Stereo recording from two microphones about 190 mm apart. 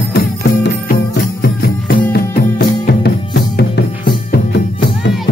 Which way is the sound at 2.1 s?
55° left (ahead or behind).